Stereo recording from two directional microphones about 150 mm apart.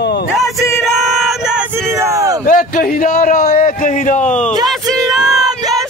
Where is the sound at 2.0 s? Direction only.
20° right (ahead or behind).